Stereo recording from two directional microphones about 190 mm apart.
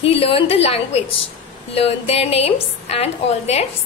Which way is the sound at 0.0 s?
30° left (ahead or behind).